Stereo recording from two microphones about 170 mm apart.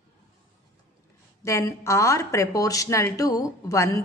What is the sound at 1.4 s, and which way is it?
A woman's voice, 20° left (ahead or behind).